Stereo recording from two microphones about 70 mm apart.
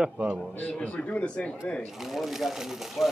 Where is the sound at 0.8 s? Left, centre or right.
Centre.